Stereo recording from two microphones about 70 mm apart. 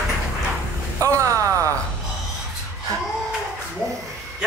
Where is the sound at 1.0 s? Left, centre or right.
Right.